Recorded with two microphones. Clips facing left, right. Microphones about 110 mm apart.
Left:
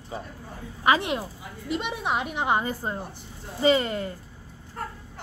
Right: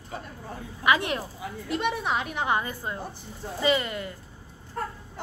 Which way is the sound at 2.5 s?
30° left (ahead or behind).